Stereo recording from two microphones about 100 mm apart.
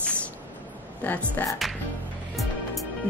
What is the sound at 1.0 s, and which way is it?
Speech, 20° left (ahead or behind).